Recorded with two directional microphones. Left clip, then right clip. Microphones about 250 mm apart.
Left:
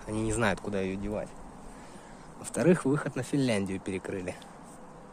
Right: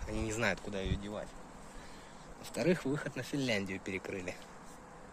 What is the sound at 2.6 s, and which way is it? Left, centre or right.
Speech, centre.